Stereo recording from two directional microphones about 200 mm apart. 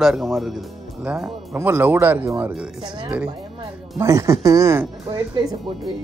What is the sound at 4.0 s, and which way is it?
Speech, 15° right (ahead or behind).